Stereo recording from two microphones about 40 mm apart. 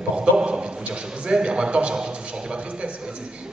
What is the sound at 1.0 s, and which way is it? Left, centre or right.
A man's voice, right.